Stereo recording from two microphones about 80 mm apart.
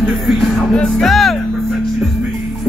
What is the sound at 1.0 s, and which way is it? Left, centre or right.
Music, centre.